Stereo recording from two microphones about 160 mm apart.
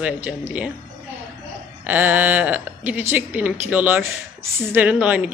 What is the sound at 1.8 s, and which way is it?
Speech, 10° right (ahead or behind).